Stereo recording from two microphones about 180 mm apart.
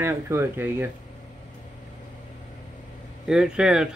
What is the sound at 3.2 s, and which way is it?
Speech, 5° right (ahead or behind).